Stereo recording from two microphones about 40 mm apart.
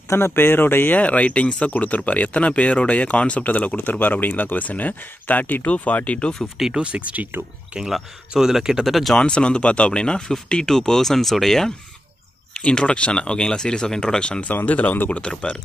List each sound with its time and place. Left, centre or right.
0.3 s speech: left
0.9 s speech: left
4.0 s speech: left
6.8 s speech: right
8.3 s speech: centre
8.8 s speech: centre
9.1 s speech: left; by 11.7 s centre
12.5 s speech: left
14.7 s speech: left